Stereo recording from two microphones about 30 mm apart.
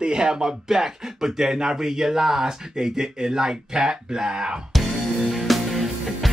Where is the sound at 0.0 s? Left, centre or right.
Right.